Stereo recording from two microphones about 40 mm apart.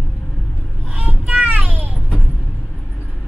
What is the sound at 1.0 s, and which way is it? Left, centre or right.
Vehicle, right.